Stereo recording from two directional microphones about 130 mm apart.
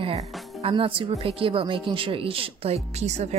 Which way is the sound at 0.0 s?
45° right (ahead or behind).